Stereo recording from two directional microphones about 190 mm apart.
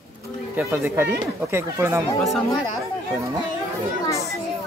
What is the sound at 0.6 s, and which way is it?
Speech, 15° right (ahead or behind).